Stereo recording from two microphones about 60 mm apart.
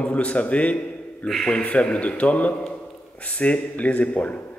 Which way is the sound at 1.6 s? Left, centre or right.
Left.